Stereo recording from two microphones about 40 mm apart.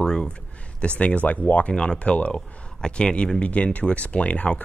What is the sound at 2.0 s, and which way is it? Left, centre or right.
Speech, left.